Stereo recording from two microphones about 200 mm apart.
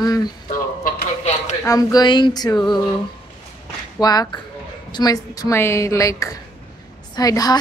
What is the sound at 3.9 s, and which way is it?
A woman's voice, 20° left (ahead or behind).